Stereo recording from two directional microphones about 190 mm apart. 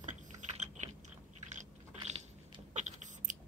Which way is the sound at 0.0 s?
40° right (ahead or behind).